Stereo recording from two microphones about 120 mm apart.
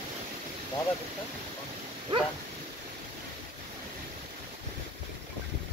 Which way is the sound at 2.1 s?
45° right (ahead or behind).